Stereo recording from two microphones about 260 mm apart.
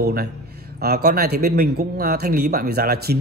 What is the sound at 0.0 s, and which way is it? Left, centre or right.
Speech, right.